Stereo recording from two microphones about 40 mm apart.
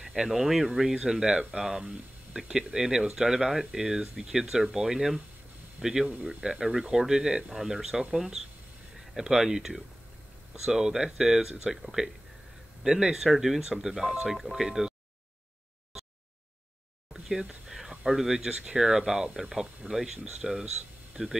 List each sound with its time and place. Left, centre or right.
0.0 s speech: centre
0.9 s speech: right
14.0 s speech: right
14.3 s speech: centre
18.1 s speech: centre
19.9 s speech: centre